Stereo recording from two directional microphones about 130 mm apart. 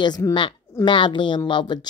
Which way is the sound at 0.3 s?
40° left (ahead or behind).